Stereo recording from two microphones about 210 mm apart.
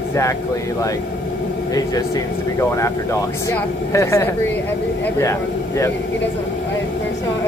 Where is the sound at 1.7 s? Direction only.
15° left (ahead or behind).